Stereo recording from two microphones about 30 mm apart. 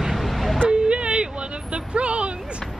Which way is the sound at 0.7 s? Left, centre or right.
Right.